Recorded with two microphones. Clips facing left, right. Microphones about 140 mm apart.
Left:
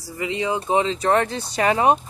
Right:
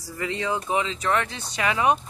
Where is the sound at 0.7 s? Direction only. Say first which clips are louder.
Left 7 dB; 35° left (ahead or behind).